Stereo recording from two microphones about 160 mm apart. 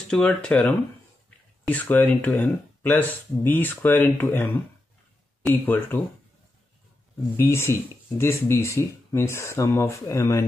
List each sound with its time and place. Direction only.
0.1 s speech: 5° left (ahead or behind)
5.5 s speech: 15° left (ahead or behind)
7.3 s speech: 15° left (ahead or behind)